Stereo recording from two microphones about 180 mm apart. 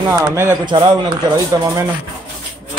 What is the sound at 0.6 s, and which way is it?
Speech, 25° right (ahead or behind).